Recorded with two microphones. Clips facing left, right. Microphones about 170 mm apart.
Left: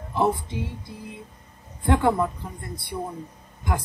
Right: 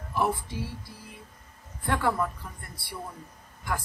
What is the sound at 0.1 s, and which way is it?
Speech, 20° left (ahead or behind).